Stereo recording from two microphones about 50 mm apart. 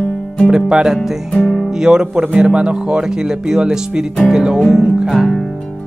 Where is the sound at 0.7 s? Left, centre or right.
Centre.